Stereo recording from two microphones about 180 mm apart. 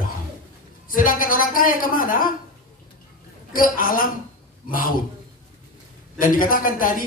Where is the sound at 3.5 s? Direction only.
50° left (ahead or behind).